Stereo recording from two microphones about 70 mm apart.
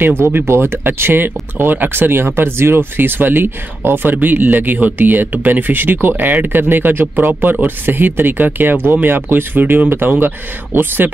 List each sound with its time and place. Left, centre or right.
0.2 s speech: right